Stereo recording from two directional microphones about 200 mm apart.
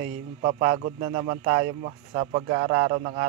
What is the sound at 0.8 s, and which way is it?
Speech, 40° right (ahead or behind).